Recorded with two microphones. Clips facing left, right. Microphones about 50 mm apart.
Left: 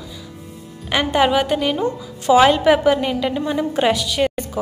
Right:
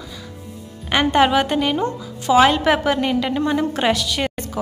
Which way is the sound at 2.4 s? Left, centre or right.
Centre.